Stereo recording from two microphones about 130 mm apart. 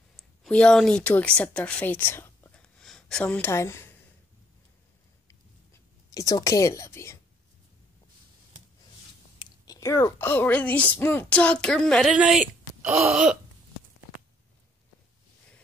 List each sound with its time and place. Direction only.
0.5 s a woman's voice: 5° left (ahead or behind)
5.3 s a sound: 25° left (ahead or behind)
9.4 s a woman's voice: 25° left (ahead or behind); by 12.4 s 5° right (ahead or behind)